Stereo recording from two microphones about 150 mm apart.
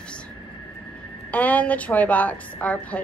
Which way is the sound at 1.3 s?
10° left (ahead or behind).